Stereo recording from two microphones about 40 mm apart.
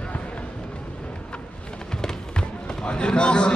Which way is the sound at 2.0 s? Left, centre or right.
Centre.